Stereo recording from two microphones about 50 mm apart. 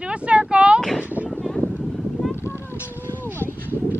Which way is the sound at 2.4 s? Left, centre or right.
Left.